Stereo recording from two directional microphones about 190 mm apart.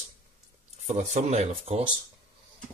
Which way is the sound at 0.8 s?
40° right (ahead or behind).